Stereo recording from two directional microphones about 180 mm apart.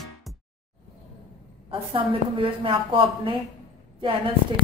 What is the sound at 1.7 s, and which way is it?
A woman's voice, 30° right (ahead or behind).